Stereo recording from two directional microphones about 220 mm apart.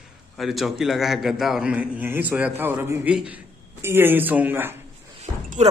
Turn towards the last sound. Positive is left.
turn(degrees=-30)  # may be behind; listen again after turning